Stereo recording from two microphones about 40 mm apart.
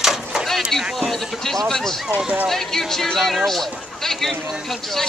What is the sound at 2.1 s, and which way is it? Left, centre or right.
Speech, right.